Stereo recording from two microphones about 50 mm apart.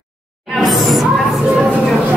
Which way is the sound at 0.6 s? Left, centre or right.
Centre.